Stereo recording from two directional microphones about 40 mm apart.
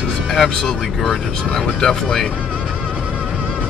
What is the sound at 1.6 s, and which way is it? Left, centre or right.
Speech, centre.